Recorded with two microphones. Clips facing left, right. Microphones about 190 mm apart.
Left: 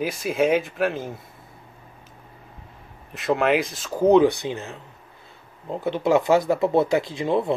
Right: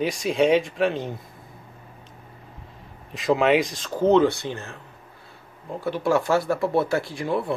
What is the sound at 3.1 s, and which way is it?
Speech, centre (ahead or behind).